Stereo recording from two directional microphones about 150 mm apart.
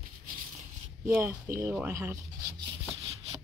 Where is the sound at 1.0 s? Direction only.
15° right (ahead or behind).